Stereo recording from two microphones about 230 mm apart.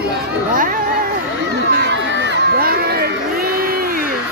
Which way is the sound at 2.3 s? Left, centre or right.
Right.